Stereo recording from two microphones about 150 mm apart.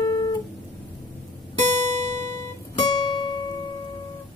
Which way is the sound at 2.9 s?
30° left (ahead or behind).